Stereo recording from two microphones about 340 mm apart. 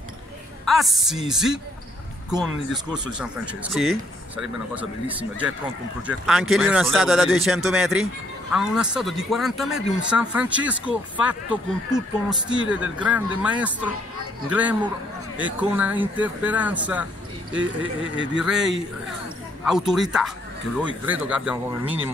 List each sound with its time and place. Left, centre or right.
0.7 s speech: centre
2.9 s speech: centre
18.1 s a man's voice: right
18.4 s speech: centre